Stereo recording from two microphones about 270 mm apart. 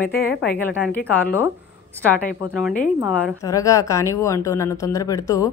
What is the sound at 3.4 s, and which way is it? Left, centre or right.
A woman's voice, centre.